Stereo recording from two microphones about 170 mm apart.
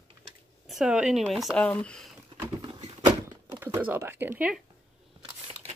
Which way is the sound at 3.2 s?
15° right (ahead or behind).